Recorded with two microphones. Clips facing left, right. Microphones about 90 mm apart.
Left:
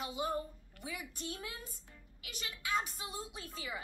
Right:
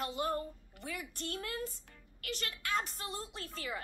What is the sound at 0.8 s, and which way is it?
A woman's voice, 5° left (ahead or behind).